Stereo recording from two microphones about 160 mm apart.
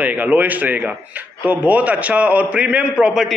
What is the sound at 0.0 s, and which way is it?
A man's voice, 10° right (ahead or behind).